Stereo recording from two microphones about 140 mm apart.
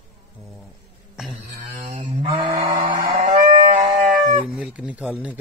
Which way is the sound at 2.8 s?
40° right (ahead or behind).